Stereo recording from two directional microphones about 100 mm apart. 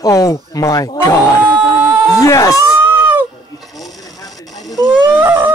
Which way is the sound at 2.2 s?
35° left (ahead or behind).